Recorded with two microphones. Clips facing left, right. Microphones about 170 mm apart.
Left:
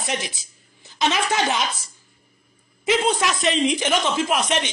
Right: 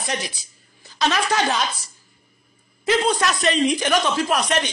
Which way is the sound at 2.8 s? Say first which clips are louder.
Right 1 dB; 10° left (ahead or behind).